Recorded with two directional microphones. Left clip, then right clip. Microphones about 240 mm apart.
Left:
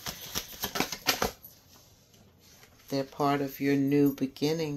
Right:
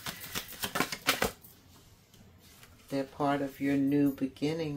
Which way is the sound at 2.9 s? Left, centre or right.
Left.